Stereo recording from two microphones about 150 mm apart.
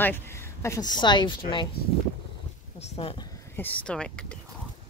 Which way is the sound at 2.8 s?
40° left (ahead or behind).